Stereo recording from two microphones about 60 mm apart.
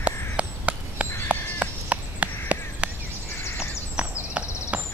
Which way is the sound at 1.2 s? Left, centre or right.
Right.